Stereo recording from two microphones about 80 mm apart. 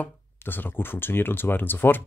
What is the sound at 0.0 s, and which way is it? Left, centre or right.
Speech, left.